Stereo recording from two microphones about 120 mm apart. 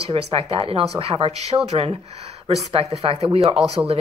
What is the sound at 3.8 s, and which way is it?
Speech, 25° right (ahead or behind).